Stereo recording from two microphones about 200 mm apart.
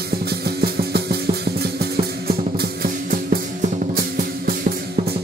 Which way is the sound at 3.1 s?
45° right (ahead or behind).